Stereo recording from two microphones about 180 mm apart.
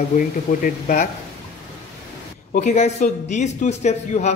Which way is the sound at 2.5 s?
40° left (ahead or behind).